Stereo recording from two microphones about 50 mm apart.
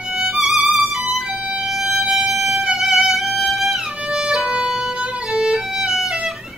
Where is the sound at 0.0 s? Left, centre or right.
Centre.